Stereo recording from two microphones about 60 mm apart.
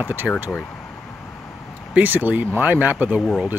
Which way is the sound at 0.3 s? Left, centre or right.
Left.